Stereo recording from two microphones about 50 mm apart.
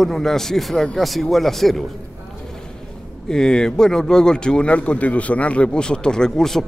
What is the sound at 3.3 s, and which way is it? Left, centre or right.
Speech, centre.